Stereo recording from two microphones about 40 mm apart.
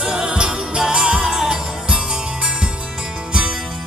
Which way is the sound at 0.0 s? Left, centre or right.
Centre.